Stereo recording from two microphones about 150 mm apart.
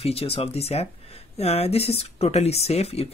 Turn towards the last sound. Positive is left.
turn(degrees=40)  # may be behind; listen again after turning